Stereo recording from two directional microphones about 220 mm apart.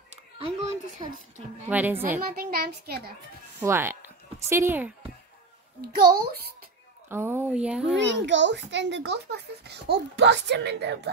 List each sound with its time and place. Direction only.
0.1 s a sound: 30° right (ahead or behind)
1.0 s a woman's voice: 20° right (ahead or behind)
1.7 s speech: 10° right (ahead or behind)
2.3 s a child's voice: 45° right (ahead or behind)
3.6 s speech: 10° right (ahead or behind)
7.1 s speech: 10° right (ahead or behind)
8.0 s a child's voice: 55° right (ahead or behind)